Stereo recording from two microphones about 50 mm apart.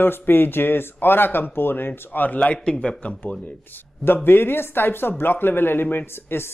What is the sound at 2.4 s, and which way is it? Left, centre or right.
Speech, left.